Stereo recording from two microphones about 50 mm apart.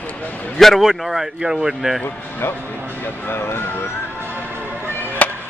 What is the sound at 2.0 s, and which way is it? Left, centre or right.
Speech, left.